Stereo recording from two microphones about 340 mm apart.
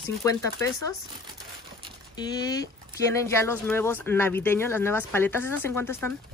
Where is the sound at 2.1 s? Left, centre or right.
Centre.